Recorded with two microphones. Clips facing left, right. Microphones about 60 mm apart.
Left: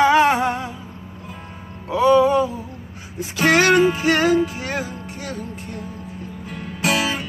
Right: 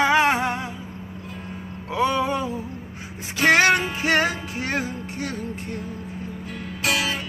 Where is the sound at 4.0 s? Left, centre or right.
Right.